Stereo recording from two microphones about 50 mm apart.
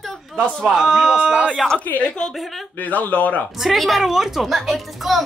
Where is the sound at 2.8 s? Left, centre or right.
Left.